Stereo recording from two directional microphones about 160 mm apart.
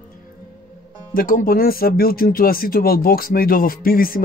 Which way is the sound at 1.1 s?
60° left (ahead or behind).